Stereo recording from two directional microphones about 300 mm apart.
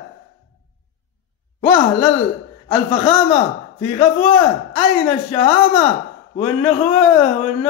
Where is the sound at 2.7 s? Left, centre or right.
Centre.